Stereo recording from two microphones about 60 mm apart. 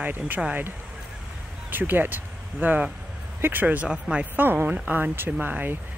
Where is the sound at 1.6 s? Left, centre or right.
Right.